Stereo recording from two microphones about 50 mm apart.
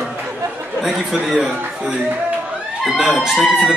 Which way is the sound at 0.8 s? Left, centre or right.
Centre.